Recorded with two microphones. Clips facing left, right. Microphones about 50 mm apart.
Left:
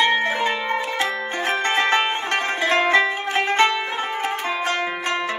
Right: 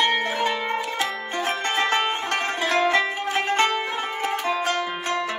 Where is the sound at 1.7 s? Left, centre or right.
Left.